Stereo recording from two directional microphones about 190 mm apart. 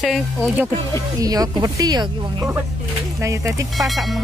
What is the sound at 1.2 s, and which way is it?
Speech, 20° right (ahead or behind).